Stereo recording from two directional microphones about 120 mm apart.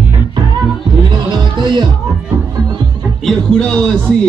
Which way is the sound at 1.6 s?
40° right (ahead or behind).